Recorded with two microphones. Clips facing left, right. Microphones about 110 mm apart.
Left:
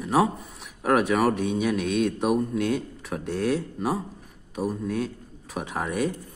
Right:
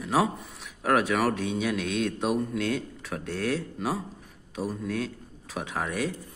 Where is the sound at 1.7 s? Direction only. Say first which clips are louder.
Left 4 dB; 10° left (ahead or behind).